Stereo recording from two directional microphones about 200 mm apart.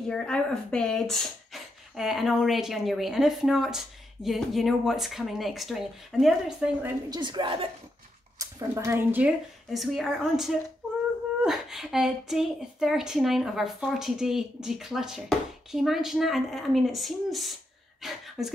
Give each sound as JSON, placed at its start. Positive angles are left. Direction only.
{"t": 0.1, "sound": "speech", "side_deg": 5}
{"t": 7.1, "sound": "a woman's voice", "side_deg": -20}
{"t": 8.4, "sound": "speech", "side_deg": -15}